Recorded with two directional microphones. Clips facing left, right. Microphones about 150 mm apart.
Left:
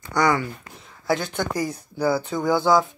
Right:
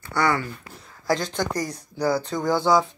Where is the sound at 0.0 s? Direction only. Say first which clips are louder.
Left 2 dB; 15° left (ahead or behind).